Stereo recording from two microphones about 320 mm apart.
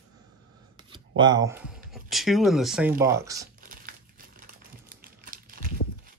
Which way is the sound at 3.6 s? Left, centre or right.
Right.